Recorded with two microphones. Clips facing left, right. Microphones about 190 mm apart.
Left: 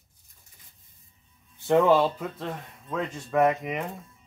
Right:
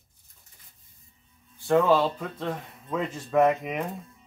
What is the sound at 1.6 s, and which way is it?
Speech, 20° left (ahead or behind).